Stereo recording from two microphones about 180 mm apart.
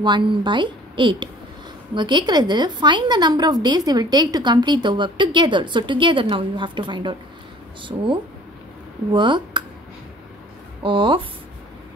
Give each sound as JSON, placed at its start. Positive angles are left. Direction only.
{"t": 0.0, "sound": "a woman's voice", "side_deg": -25}
{"t": 9.1, "sound": "a woman's voice", "side_deg": -25}
{"t": 10.8, "sound": "a woman's voice", "side_deg": -30}